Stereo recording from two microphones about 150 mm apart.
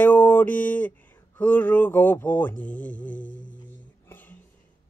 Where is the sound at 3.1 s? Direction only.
60° left (ahead or behind).